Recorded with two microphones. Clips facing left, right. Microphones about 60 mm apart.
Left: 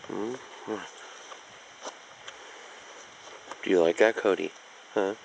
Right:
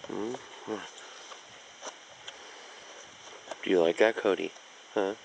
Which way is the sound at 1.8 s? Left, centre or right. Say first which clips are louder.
Left 3 dB; centre.